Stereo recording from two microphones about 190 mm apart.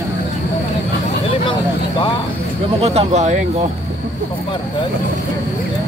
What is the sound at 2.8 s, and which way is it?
Speech, 35° right (ahead or behind).